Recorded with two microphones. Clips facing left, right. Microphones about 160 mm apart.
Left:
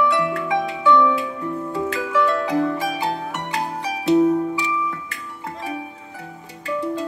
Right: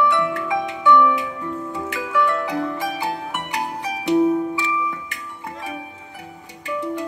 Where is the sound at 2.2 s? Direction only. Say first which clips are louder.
Left 2 dB; 20° left (ahead or behind).